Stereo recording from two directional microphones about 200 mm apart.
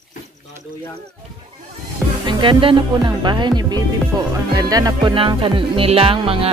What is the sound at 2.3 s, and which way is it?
Speech, 25° right (ahead or behind).